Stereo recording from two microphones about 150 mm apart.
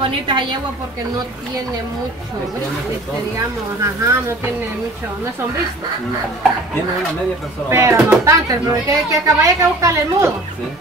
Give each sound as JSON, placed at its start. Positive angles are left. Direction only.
{"t": 0.0, "sound": "a woman's voice", "side_deg": -35}
{"t": 3.3, "sound": "speech", "side_deg": -20}
{"t": 7.7, "sound": "speech", "side_deg": -20}